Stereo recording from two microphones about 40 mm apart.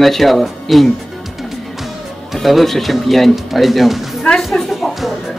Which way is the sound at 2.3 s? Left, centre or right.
Centre.